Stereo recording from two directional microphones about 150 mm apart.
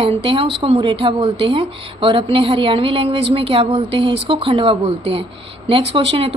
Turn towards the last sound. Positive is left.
turn(degrees=-40)  # may be behind; listen again after turning